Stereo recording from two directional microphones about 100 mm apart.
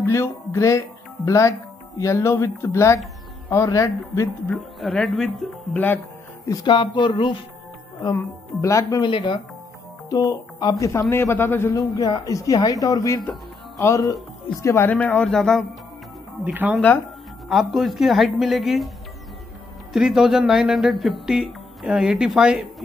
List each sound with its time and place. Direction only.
0.0 s speech: 25° left (ahead or behind)
4.7 s speech: centre (ahead or behind)
6.6 s speech: 50° left (ahead or behind)
8.1 s speech: 30° left (ahead or behind)
9.0 s speech: 55° left (ahead or behind)
10.0 s speech: 35° left (ahead or behind)
12.0 s speech: 35° left (ahead or behind)
14.9 s a man's voice: 15° left (ahead or behind)
16.4 s speech: 15° right (ahead or behind)
17.5 s speech: centre (ahead or behind)
19.9 s speech: 5° right (ahead or behind)